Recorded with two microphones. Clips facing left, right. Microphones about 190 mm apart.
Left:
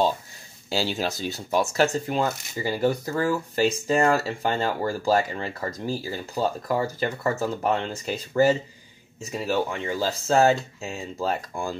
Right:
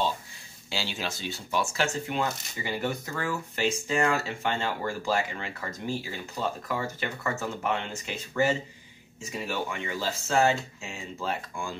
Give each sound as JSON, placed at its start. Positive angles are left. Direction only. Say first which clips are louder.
{"t": 0.7, "sound": "speech", "louder": "left 7 dB", "side_deg": 40}